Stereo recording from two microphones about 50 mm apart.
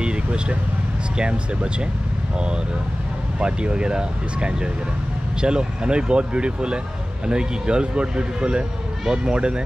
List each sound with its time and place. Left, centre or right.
0.0 s vehicle: centre
1.1 s speech: right